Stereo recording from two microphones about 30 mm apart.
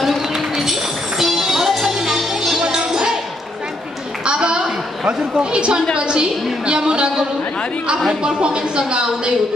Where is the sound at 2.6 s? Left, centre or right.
Right.